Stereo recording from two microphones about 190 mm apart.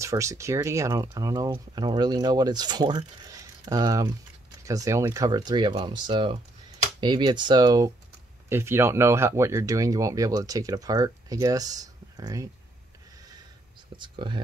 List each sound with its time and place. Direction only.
0.0 s speech: 15° right (ahead or behind)
13.9 s speech: 25° right (ahead or behind)